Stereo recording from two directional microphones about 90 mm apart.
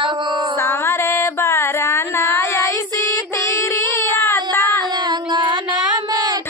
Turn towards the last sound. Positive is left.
turn(degrees=-45)  # may be behind; listen again after turning